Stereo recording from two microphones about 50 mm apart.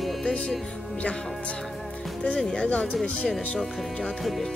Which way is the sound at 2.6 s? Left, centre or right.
Left.